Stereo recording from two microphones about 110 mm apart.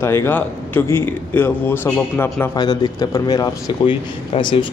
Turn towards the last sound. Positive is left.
turn(degrees=50)  # may be behind; listen again after turning